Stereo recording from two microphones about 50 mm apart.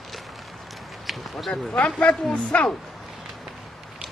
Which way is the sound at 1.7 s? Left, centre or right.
Left.